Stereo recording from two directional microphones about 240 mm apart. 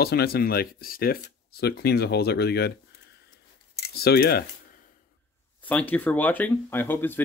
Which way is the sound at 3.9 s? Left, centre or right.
Left.